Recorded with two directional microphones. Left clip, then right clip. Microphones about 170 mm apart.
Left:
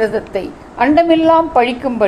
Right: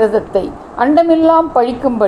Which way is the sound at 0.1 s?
90° right.